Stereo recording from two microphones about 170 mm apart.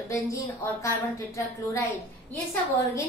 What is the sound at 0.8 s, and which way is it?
A woman's voice, 20° left (ahead or behind).